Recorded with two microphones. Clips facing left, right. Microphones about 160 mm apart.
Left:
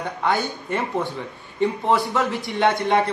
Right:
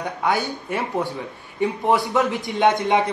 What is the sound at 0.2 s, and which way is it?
A man's voice, 10° right (ahead or behind).